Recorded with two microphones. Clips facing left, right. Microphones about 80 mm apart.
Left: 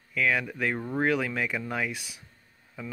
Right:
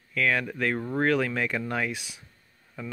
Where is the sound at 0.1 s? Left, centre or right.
Centre.